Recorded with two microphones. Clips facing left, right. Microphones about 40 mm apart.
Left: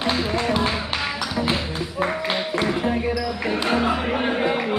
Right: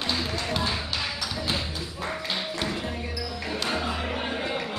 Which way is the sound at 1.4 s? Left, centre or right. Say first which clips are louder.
Left 7 dB; left.